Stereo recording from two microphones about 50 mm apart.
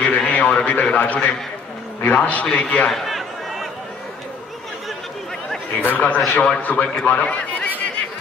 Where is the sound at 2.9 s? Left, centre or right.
Centre.